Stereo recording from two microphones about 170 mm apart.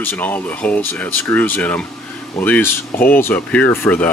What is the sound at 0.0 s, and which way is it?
Speech, 10° left (ahead or behind).